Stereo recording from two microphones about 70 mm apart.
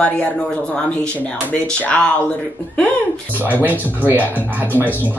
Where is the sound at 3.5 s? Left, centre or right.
Right.